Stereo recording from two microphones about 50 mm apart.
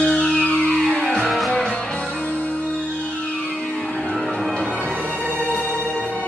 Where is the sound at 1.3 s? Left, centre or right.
Centre.